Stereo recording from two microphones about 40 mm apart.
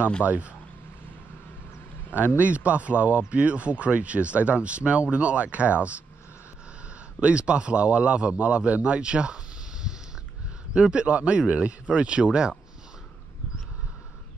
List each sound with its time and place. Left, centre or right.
0.2 s speech: right
2.1 s speech: right
7.2 s a man's voice: right
10.7 s a man's voice: right